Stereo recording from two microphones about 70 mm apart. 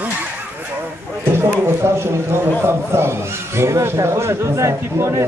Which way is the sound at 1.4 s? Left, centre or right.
Right.